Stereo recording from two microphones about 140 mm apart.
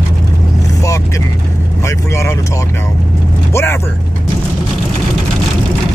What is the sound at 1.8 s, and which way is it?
Speech, 20° left (ahead or behind).